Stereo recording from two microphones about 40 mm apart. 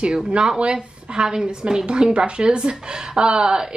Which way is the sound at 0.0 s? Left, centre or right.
Right.